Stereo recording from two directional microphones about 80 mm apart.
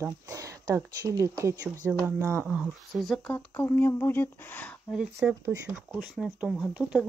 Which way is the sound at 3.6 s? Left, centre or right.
Left.